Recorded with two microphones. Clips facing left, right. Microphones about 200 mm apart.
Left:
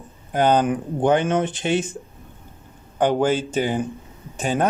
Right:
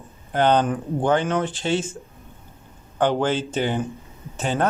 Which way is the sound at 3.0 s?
10° left (ahead or behind).